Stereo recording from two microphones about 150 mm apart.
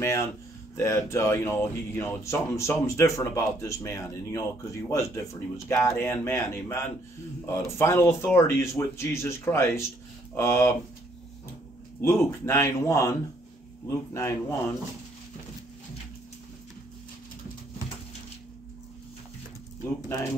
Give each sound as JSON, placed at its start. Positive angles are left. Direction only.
{"t": 0.7, "sound": "speech", "side_deg": 20}
{"t": 12.0, "sound": "speech", "side_deg": 15}